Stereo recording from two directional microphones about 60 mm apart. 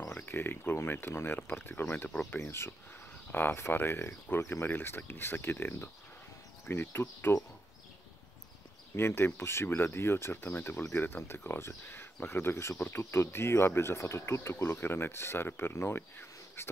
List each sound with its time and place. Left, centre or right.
0.1 s a sound: left
0.8 s speech: left
8.9 s speech: left